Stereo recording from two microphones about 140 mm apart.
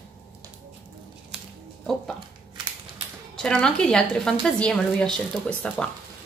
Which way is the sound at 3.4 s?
5° left (ahead or behind).